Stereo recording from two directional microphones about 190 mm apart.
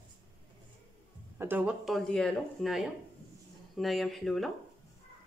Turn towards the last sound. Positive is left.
turn(degrees=0)  # may be behind; listen again after turning